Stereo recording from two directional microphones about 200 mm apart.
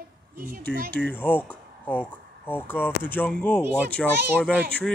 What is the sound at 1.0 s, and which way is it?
Speech, 10° left (ahead or behind).